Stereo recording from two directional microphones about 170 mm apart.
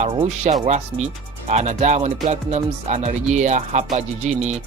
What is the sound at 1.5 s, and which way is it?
Speech, 40° right (ahead or behind).